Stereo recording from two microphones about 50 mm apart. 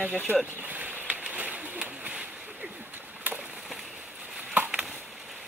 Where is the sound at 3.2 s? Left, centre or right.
Right.